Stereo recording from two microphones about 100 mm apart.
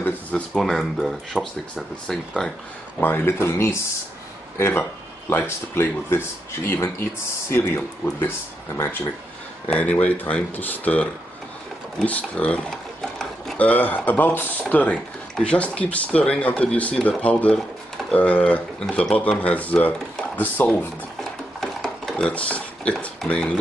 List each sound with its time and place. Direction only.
0.0 s speech: 20° left (ahead or behind)
0.6 s speech: centre (ahead or behind)
3.0 s speech: 20° left (ahead or behind)
9.7 s speech: 15° left (ahead or behind)
13.6 s speech: 15° left (ahead or behind)
21.2 s a sound: 5° left (ahead or behind)